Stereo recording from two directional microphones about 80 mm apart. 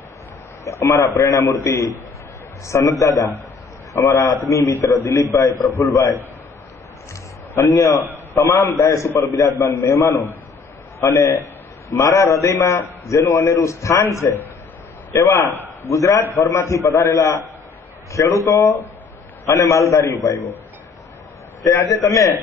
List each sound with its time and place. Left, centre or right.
0.7 s a man's voice: left
7.5 s a man's voice: left
21.6 s a man's voice: left